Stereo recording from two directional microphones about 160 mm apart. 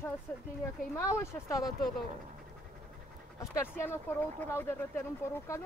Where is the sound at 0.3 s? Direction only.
10° left (ahead or behind).